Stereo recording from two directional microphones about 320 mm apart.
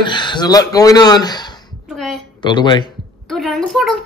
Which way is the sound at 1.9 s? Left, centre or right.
Centre.